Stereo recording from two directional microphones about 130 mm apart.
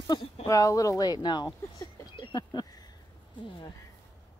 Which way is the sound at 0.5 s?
25° left (ahead or behind).